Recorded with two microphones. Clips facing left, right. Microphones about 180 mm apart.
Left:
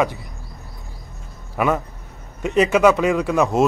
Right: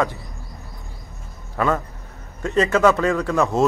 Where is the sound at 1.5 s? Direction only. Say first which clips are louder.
Left 1 dB; 15° left (ahead or behind).